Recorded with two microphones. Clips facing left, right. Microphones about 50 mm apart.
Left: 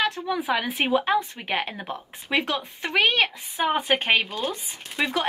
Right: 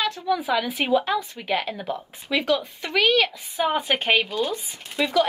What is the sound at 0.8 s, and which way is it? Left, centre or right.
Speech, centre.